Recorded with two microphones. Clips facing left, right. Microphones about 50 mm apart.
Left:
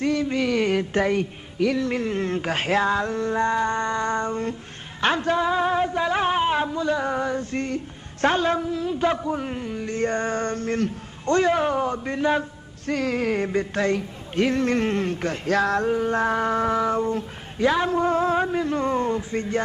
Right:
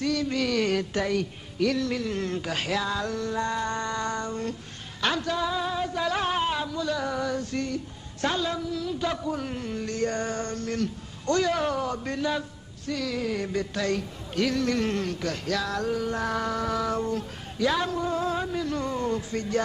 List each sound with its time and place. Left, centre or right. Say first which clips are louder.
0.0 s a sound: left 4 dB; left
0.9 s speech: left 5 dB; left
1.6 s female singing: left 3 dB; centre
1.9 s speech: left 4 dB; left
3.6 s female singing: left 5 dB; left
5.0 s speech: left 5 dB; left
9.7 s a sound: left 2 dB; centre
9.9 s speech: left 5 dB; left
17.9 s speech: left 7 dB; left
19.1 s female singing: left 3 dB; left